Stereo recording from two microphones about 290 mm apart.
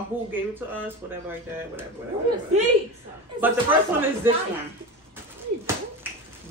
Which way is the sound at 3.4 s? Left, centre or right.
Centre.